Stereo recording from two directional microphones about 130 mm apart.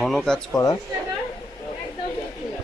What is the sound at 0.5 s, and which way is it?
Speech, 25° left (ahead or behind).